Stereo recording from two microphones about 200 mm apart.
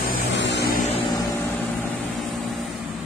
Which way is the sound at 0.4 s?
60° left (ahead or behind).